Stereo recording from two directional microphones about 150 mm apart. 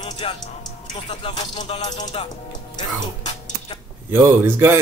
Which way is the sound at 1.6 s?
50° left (ahead or behind).